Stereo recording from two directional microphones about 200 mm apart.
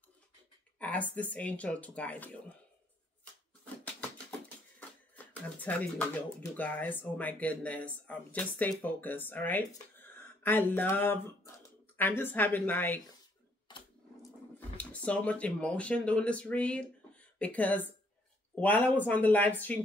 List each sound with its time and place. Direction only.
0.7 s speech: 5° left (ahead or behind)
4.7 s speech: 10° left (ahead or behind)
13.7 s sewing machine: 20° left (ahead or behind)
14.8 s speech: 5° left (ahead or behind)